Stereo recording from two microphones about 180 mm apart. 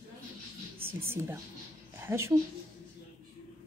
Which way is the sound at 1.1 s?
15° right (ahead or behind).